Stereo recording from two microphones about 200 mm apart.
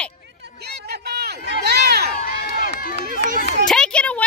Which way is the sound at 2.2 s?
45° left (ahead or behind).